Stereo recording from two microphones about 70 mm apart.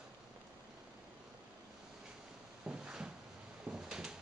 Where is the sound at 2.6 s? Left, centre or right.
Centre.